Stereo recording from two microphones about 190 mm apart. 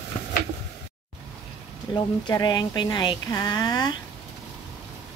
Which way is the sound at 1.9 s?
25° left (ahead or behind).